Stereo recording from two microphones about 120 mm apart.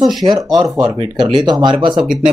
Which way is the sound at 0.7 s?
40° right (ahead or behind).